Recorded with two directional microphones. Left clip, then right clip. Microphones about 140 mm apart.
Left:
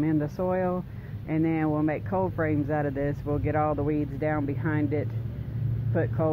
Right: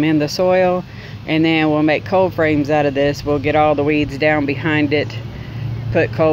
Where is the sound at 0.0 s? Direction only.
40° right (ahead or behind).